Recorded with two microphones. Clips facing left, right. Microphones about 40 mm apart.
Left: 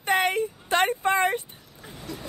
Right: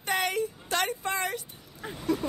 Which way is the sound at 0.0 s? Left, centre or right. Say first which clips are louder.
Left 5 dB; left.